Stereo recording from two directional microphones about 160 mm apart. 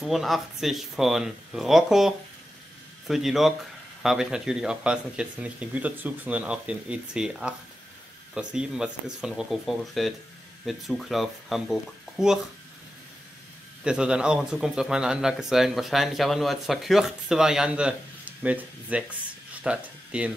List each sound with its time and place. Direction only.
0.0 s speech: centre (ahead or behind)
13.8 s speech: 5° right (ahead or behind)